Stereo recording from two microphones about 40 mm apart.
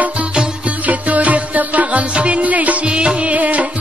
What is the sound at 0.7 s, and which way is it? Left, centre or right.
Music, right.